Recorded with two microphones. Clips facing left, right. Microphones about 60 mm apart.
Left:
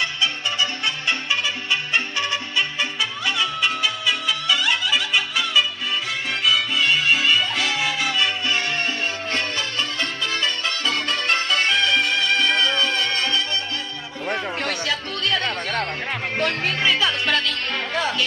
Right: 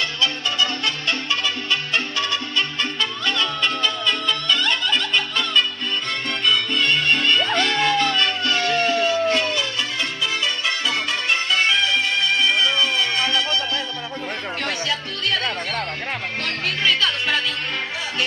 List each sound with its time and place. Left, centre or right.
0.0 s music: left
8.5 s music: left
12.4 s music: left
16.3 s music: centre